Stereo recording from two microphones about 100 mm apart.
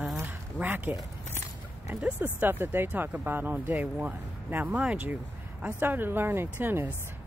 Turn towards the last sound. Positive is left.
turn(degrees=-20)  # may be behind; listen again after turning